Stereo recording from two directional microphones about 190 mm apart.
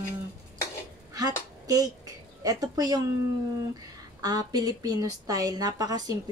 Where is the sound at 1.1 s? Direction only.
20° right (ahead or behind).